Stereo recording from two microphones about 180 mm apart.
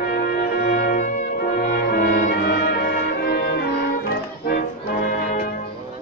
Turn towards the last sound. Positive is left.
turn(degrees=45)  # may be behind; listen again after turning